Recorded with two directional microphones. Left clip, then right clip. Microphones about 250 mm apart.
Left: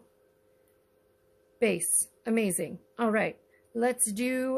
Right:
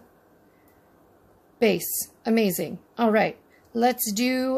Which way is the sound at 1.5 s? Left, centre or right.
Centre.